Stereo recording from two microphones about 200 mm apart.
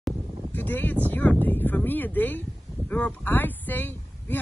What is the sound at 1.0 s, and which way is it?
Speech, 10° left (ahead or behind).